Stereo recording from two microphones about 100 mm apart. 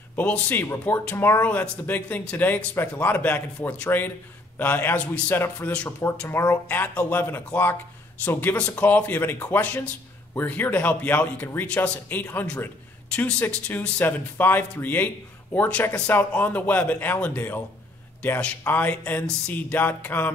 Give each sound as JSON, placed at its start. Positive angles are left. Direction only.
{"t": 0.1, "sound": "speech", "side_deg": 15}
{"t": 6.2, "sound": "speech", "side_deg": 25}